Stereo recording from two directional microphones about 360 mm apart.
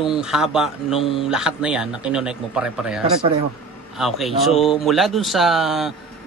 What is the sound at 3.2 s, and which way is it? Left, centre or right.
Speech, centre.